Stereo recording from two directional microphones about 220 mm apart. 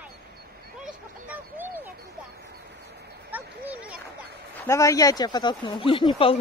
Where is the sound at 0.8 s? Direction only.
5° right (ahead or behind).